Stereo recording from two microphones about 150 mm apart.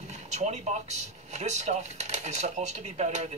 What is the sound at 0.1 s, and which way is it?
Speech, 50° right (ahead or behind).